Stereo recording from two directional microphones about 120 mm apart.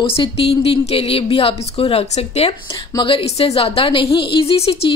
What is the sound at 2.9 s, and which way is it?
A woman's voice, 45° left (ahead or behind).